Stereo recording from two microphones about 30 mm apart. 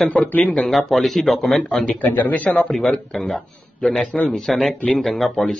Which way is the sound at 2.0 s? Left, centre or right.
Left.